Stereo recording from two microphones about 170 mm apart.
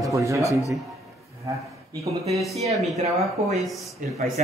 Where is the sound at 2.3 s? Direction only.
Centre (ahead or behind).